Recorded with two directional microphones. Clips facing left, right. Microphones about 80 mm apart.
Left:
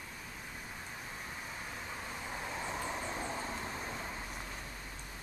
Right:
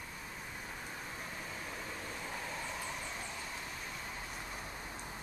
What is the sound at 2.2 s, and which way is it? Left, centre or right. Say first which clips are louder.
Vehicle: left 3 dB; centre.